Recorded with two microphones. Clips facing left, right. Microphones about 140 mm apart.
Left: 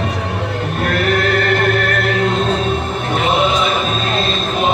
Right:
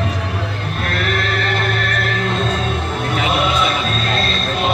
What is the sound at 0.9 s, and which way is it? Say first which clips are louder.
Music: left 5 dB; 50° left (ahead or behind).